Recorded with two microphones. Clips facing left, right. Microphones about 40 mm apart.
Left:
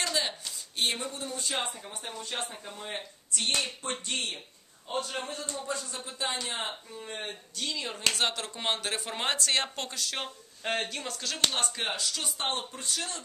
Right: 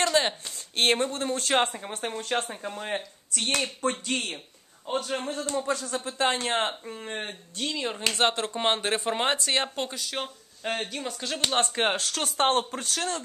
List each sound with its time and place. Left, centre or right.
0.0 s a sound: right
0.7 s speech: right
3.3 s speech: right
4.8 s speech: right
5.5 s speech: right
6.3 s speech: right
7.1 s speech: right; by 11.1 s centre
11.1 s speech: centre
11.5 s speech: right